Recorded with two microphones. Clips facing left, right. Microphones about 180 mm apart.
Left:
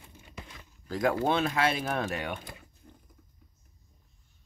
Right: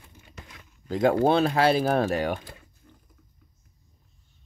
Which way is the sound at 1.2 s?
35° right (ahead or behind).